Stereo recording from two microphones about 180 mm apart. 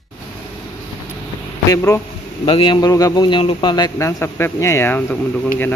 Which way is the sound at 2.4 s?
30° left (ahead or behind).